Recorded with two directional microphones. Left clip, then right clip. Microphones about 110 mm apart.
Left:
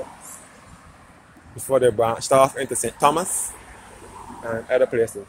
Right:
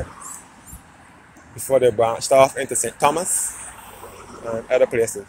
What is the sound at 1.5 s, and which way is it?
Speech, 15° left (ahead or behind).